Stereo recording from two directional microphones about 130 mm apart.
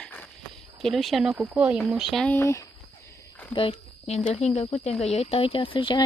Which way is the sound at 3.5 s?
50° left (ahead or behind).